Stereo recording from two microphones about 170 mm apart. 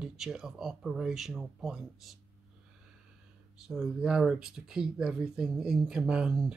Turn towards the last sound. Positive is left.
turn(degrees=-5)  # may be behind; listen again after turning